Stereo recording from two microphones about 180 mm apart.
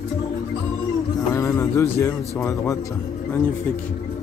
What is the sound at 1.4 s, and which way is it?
Speech, 15° left (ahead or behind).